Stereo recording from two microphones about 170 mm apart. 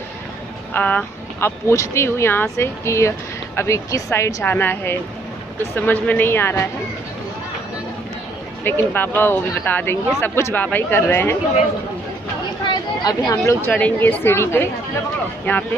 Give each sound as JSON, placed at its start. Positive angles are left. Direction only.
{"t": 0.7, "sound": "speech", "side_deg": 10}
{"t": 8.6, "sound": "speech", "side_deg": 10}
{"t": 12.6, "sound": "chatter", "side_deg": 20}
{"t": 13.5, "sound": "speech", "side_deg": 10}